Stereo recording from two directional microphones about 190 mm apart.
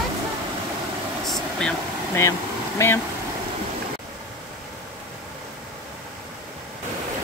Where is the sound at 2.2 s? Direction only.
15° left (ahead or behind).